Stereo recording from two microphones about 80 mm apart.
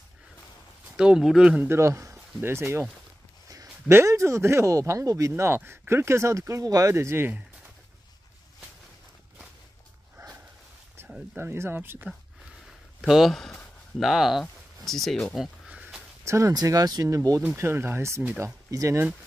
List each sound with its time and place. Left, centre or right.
0.9 s speech: centre
1.6 s speech: right
3.9 s speech: right
5.4 s speech: right
6.6 s speech: right
6.9 s speech: right
10.2 s dog: right
11.0 s a sound: right
11.3 s speech: right
13.0 s speech: centre
16.3 s speech: right
16.5 s speech: right
17.6 s speech: right